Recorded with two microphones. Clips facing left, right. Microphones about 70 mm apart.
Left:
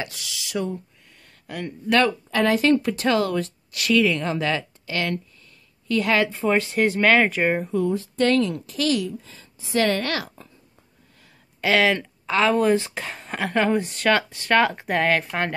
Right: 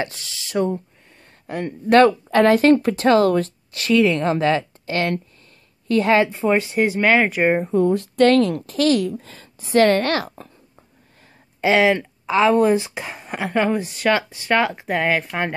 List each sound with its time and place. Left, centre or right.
0.0 s speech: right; by 7.4 s centre
7.4 s speech: right
7.9 s speech: right
11.6 s speech: centre